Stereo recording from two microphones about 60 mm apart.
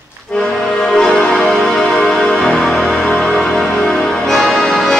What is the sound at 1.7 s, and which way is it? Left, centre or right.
Music, centre.